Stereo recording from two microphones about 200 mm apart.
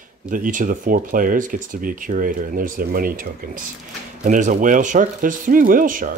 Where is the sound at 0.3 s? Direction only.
40° right (ahead or behind).